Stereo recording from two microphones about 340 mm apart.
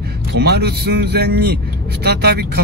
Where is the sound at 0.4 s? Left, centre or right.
Right.